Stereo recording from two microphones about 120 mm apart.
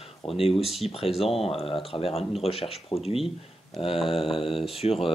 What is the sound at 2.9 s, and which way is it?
Speech, 35° left (ahead or behind).